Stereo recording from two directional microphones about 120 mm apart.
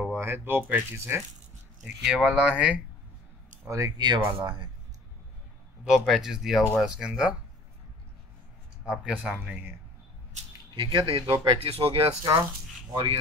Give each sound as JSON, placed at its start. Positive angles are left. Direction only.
{"t": 0.0, "sound": "speech", "side_deg": -15}
{"t": 2.0, "sound": "speech", "side_deg": -5}
{"t": 3.6, "sound": "speech", "side_deg": -25}
{"t": 5.9, "sound": "speech", "side_deg": 0}
{"t": 8.8, "sound": "speech", "side_deg": -10}
{"t": 10.7, "sound": "speech", "side_deg": -40}
{"t": 12.2, "sound": "speech", "side_deg": -35}